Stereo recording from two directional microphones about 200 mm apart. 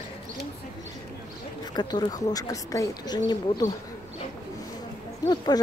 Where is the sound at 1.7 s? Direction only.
20° left (ahead or behind).